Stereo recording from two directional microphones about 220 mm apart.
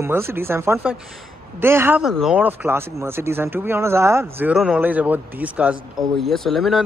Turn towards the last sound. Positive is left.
turn(degrees=0)  # may be behind; listen again after turning